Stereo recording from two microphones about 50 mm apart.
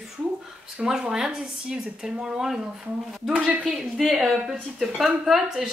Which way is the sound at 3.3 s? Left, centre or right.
Right.